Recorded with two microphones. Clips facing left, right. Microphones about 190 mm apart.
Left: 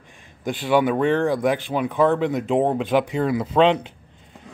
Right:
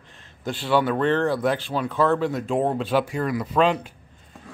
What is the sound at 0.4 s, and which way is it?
Speech, 15° left (ahead or behind).